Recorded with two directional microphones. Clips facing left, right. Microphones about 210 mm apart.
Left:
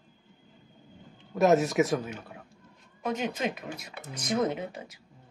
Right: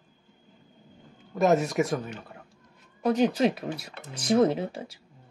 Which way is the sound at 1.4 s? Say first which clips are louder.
Even; centre (ahead or behind).